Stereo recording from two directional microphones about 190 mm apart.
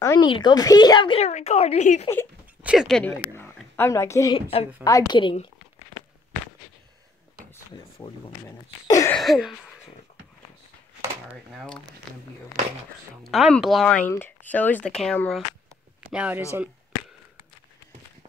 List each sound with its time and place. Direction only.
0.0 s speech: 20° left (ahead or behind); by 2.0 s 35° left (ahead or behind)
2.6 s speech: 5° right (ahead or behind)
3.1 s a woman's voice: 10° left (ahead or behind); by 5.5 s 25° left (ahead or behind)
8.0 s speech: 20° left (ahead or behind)
9.1 s speech: centre (ahead or behind)
11.5 s speech: 5° left (ahead or behind)
16.0 s speech: 10° right (ahead or behind)